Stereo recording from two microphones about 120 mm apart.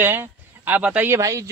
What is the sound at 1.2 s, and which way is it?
Speech, 25° right (ahead or behind).